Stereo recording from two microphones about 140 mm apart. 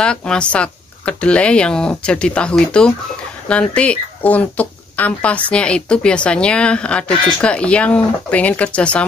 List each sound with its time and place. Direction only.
0.0 s speech: 5° left (ahead or behind)